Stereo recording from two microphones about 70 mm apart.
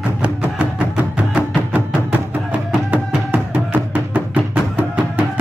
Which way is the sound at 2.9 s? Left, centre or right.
Right.